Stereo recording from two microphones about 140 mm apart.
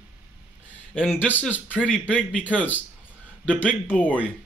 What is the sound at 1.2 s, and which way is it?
Speech, 15° left (ahead or behind).